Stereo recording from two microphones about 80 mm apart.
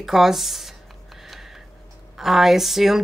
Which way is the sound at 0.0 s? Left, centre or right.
Centre.